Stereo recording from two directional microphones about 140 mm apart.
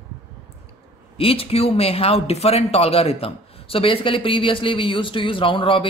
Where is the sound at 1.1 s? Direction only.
40° left (ahead or behind).